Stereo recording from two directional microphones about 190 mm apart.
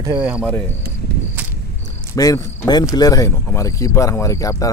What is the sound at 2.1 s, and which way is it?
Speech, 15° left (ahead or behind).